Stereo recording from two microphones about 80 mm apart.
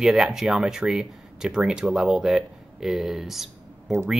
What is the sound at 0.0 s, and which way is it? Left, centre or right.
Speech, centre.